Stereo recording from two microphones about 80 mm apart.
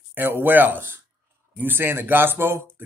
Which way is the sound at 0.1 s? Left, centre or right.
Right.